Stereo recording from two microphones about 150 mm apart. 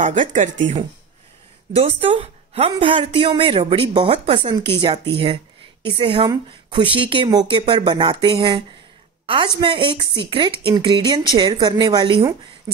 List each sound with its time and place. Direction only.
0.0 s speech: 55° right (ahead or behind)
1.7 s a woman's voice: 40° right (ahead or behind)